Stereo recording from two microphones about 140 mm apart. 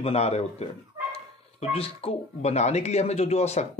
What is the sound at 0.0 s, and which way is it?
Speech, 45° left (ahead or behind).